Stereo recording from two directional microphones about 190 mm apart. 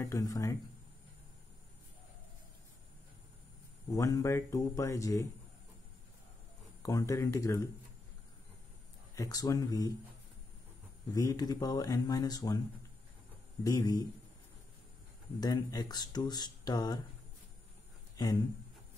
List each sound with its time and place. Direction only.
0.0 s speech: 20° left (ahead or behind)
3.9 s speech: 15° left (ahead or behind)
6.8 s speech: 15° left (ahead or behind)
9.1 s speech: 20° left (ahead or behind)
11.1 s speech: 20° left (ahead or behind)
13.7 s speech: 20° left (ahead or behind)
15.4 s speech: 20° left (ahead or behind)
18.1 s a sound: 20° left (ahead or behind)